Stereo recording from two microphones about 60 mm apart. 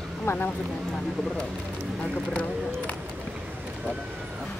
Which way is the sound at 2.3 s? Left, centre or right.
Left.